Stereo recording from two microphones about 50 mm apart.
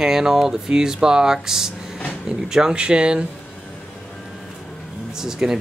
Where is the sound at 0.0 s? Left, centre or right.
Centre.